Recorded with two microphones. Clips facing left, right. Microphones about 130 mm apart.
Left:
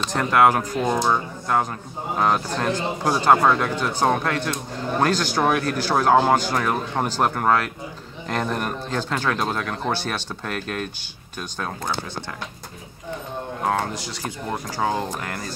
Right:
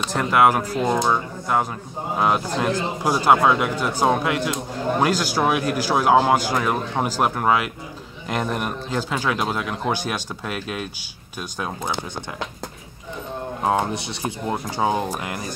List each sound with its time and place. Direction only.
0.0 s speech: 10° right (ahead or behind)
13.7 s speech: 20° right (ahead or behind)